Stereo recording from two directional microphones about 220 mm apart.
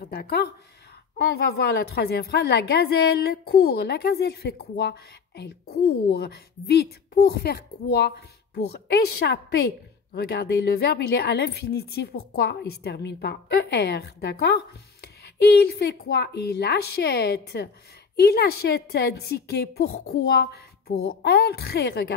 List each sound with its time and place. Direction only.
0.0 s a woman's voice: 45° left (ahead or behind)